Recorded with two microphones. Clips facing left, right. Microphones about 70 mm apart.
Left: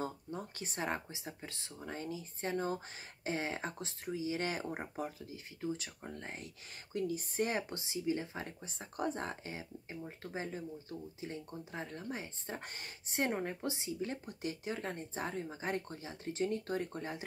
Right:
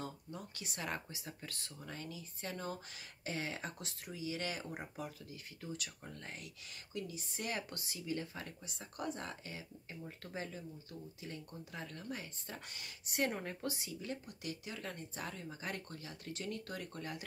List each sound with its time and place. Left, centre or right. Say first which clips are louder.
0.0 s speech: left 6 dB; left
5.2 s speech: left 8 dB; left